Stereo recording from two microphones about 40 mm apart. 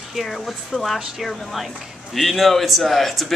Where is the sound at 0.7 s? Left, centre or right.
Right.